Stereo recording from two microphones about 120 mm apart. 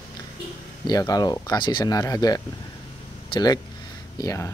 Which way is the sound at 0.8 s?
30° left (ahead or behind).